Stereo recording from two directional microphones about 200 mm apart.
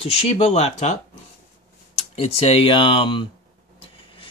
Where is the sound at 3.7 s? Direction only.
25° left (ahead or behind).